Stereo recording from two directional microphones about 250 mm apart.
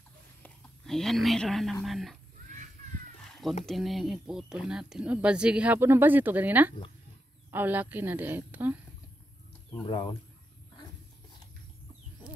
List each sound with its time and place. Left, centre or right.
0.4 s speech: centre
3.2 s cat: centre
3.6 s a woman's voice: centre
9.7 s speech: centre